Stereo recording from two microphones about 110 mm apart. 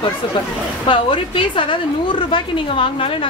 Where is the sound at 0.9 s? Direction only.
50° left (ahead or behind).